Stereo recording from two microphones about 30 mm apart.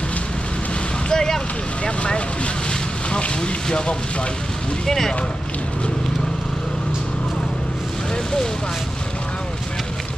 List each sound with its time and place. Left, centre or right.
1.1 s boat: left
1.9 s speech: left
4.8 s speech: centre